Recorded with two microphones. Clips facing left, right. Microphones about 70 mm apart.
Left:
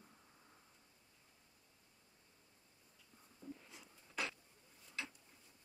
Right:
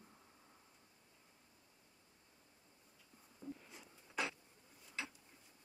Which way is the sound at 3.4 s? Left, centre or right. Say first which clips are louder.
Right 2 dB; centre.